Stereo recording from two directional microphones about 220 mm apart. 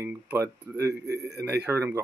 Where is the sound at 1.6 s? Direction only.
10° right (ahead or behind).